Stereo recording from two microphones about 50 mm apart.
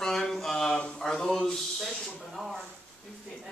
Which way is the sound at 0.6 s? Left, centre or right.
Centre.